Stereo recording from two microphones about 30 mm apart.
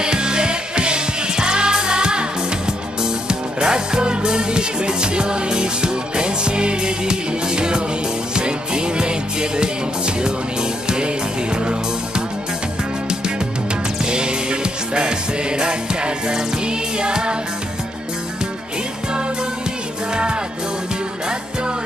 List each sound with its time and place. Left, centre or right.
0.0 s music: right
14.0 s music: right